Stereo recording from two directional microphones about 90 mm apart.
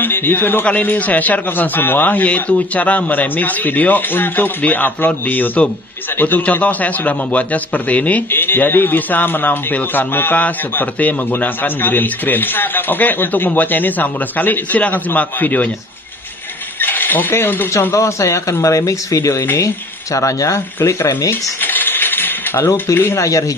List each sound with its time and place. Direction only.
0.0 s a man's voice: 25° left (ahead or behind)
16.8 s speech: 20° left (ahead or behind)
17.9 s speech: 35° left (ahead or behind)
21.3 s coin: 20° left (ahead or behind)